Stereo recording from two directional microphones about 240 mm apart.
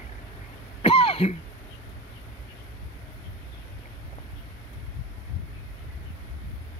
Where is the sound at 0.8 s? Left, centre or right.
Left.